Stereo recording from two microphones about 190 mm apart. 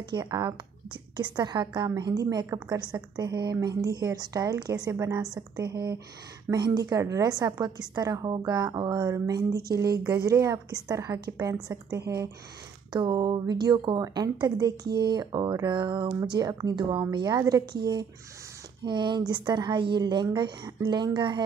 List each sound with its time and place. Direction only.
0.1 s a woman's voice: 20° right (ahead or behind)